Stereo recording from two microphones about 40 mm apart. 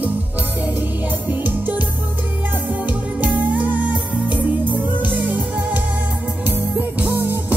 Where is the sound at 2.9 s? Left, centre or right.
Right.